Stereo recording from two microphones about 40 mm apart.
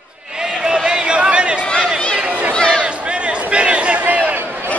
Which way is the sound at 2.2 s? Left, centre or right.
Right.